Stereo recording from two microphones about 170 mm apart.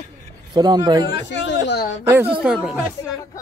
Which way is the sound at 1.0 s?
80° left.